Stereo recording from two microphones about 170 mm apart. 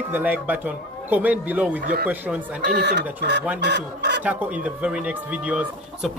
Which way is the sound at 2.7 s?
85° right.